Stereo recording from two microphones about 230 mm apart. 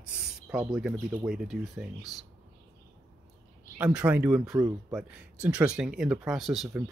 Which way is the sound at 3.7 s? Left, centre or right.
Centre.